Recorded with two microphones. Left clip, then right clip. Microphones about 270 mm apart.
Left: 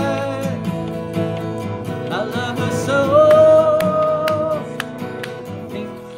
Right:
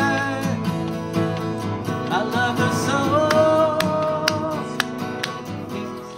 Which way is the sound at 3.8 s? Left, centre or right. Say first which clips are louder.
Left 5 dB; centre.